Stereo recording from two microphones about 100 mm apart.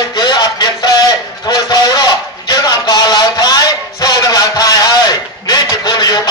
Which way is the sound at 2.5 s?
40° left (ahead or behind).